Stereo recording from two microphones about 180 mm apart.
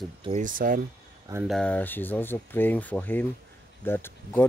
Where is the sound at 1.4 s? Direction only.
5° left (ahead or behind).